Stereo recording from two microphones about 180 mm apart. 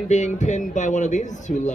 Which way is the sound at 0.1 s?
40° left (ahead or behind).